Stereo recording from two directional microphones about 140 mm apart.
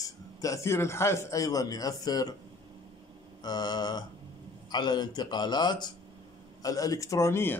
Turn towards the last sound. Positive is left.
turn(degrees=15)  # may be behind; listen again after turning